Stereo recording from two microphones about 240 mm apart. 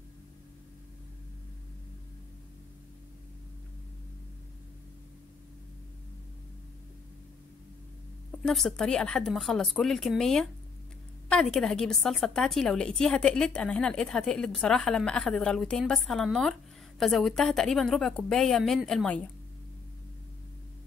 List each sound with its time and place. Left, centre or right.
8.5 s a woman's voice: centre